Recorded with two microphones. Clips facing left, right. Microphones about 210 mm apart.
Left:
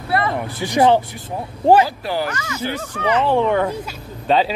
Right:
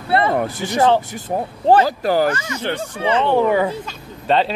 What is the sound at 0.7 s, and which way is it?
Speech, 15° left (ahead or behind).